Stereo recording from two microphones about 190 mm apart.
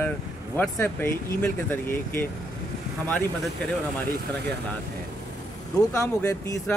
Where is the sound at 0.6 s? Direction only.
10° left (ahead or behind).